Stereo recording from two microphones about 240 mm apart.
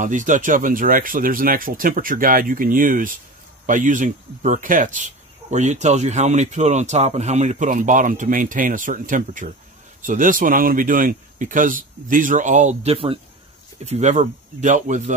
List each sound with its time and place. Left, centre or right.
0.0 s speech: right